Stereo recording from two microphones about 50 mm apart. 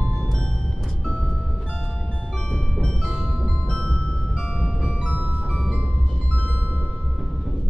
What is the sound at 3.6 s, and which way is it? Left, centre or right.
Music, centre.